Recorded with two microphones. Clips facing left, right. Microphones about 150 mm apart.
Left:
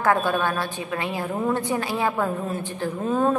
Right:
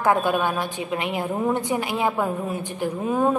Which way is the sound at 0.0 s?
15° right (ahead or behind).